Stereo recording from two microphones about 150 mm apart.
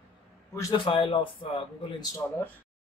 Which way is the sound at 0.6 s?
30° left (ahead or behind).